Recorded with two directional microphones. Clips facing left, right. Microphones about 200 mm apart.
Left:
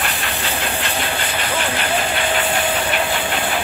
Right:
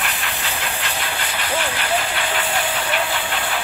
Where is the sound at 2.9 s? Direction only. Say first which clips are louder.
Left 3 dB; 20° left (ahead or behind).